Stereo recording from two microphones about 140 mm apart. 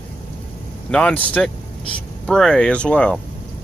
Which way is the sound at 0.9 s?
10° left (ahead or behind).